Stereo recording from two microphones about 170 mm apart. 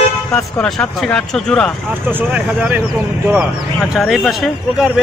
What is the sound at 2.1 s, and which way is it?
Speech, 10° right (ahead or behind).